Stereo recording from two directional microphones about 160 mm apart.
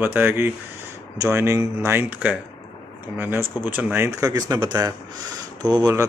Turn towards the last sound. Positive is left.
turn(degrees=-20)  # may be behind; listen again after turning